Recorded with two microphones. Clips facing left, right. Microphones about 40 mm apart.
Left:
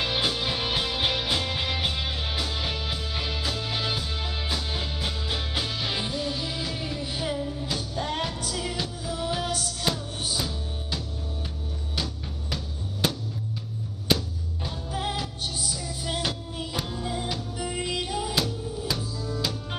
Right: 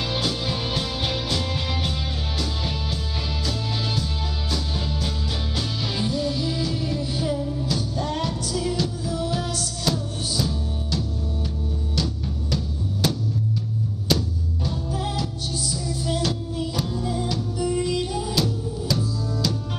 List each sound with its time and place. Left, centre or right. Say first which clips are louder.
0.0 s music: right 1 dB; left
8.7 s music: right 5 dB; left
14.9 s music: left 1 dB; left